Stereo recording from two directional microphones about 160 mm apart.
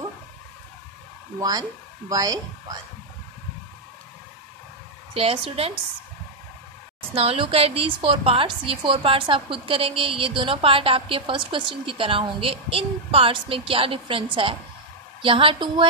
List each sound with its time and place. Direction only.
1.4 s speech: 20° right (ahead or behind)
5.1 s a woman's voice: 35° right (ahead or behind)
7.2 s a woman's voice: 35° right (ahead or behind)